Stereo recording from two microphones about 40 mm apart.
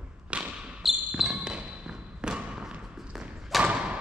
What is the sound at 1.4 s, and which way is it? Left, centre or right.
Basketball bounce, right.